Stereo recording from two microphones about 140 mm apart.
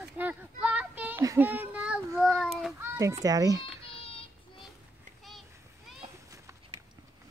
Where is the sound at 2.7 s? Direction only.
20° right (ahead or behind).